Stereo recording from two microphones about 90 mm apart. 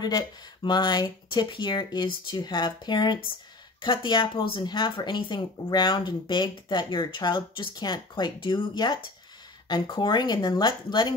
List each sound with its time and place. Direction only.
0.0 s speech: 50° left (ahead or behind)
8.7 s speech: 50° left (ahead or behind)